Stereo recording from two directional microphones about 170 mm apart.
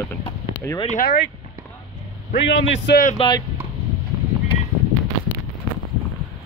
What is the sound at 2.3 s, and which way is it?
Speech, 85° left.